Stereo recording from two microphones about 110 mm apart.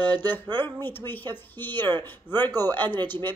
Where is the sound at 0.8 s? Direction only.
20° left (ahead or behind).